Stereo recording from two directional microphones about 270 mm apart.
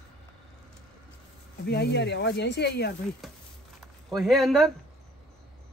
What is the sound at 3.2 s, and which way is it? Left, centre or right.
Speech, centre.